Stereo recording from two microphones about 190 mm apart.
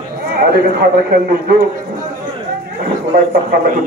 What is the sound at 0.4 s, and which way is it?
Speech, 50° right (ahead or behind).